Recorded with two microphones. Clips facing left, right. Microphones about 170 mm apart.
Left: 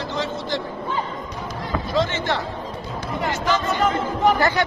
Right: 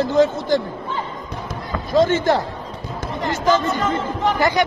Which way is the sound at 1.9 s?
45° right (ahead or behind).